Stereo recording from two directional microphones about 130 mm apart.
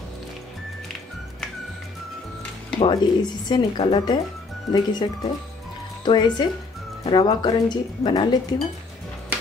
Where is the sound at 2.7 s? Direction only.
35° left (ahead or behind).